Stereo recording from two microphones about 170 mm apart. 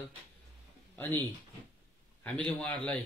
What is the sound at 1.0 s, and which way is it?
Speech, 15° left (ahead or behind).